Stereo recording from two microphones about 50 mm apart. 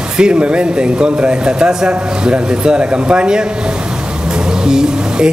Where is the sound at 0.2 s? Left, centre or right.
Right.